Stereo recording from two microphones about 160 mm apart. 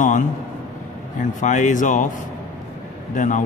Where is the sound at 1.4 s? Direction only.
50° left (ahead or behind).